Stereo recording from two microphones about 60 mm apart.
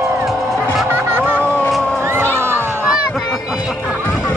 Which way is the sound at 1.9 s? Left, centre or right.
Right.